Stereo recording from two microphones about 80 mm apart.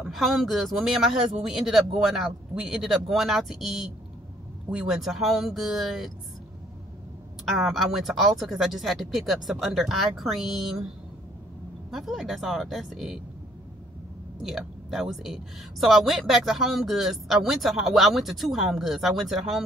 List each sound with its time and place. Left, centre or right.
0.1 s a woman's voice: centre
7.4 s a woman's voice: centre
11.9 s a woman's voice: centre
14.4 s a woman's voice: centre